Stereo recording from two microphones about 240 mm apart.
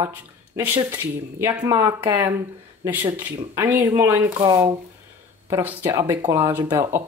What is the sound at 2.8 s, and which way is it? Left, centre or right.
Speech, centre.